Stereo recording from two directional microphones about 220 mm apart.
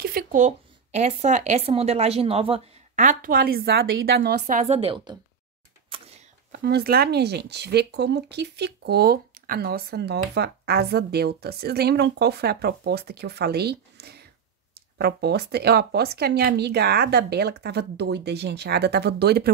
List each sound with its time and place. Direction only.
0.0 s speech: 40° right (ahead or behind)
4.4 s a woman's voice: 35° right (ahead or behind)
5.9 s a sound: 25° right (ahead or behind)
6.5 s speech: 45° right (ahead or behind)